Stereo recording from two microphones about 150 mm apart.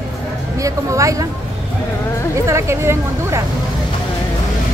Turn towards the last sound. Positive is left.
turn(degrees=-20)  # may be behind; listen again after turning